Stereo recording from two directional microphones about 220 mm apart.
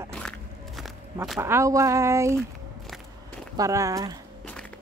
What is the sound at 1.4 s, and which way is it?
Speech, 10° right (ahead or behind).